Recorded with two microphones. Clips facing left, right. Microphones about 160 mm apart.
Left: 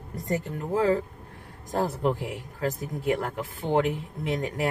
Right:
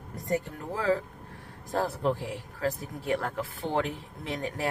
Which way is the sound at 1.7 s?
20° left (ahead or behind).